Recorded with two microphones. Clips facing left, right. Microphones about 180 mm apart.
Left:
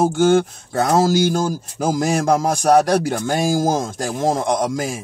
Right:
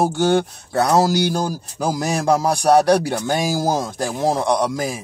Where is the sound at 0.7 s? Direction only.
45° left (ahead or behind).